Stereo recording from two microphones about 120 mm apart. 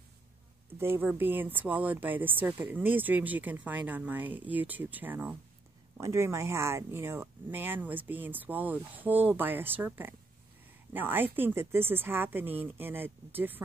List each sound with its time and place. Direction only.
0.7 s speech: 20° right (ahead or behind)